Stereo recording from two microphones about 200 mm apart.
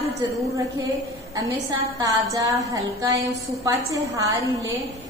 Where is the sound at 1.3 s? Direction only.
15° right (ahead or behind).